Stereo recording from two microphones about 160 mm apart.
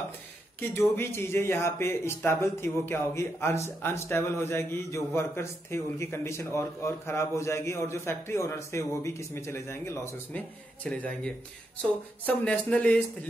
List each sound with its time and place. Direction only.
0.6 s speech: 15° left (ahead or behind)